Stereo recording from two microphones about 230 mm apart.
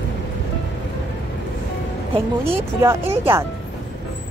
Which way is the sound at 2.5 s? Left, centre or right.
Centre.